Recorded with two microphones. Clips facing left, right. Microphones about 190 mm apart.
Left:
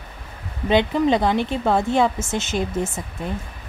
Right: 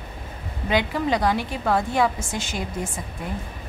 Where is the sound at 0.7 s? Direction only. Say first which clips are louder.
Left 5 dB; 25° left (ahead or behind).